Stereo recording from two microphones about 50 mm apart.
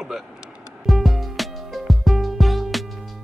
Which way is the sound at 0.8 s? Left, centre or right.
Centre.